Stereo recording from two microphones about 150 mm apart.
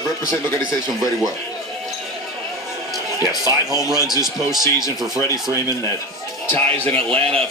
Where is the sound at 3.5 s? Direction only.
25° right (ahead or behind).